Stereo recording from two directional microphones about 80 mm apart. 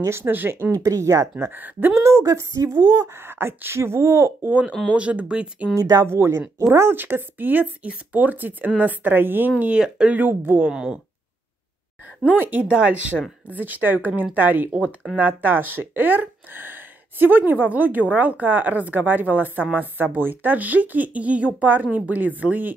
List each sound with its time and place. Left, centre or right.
0.0 s speech: right
0.7 s speech: right
1.4 s speech: right
2.0 s speech: right
4.5 s speech: centre
5.8 s speech: right
10.7 s speech: centre
12.3 s speech: right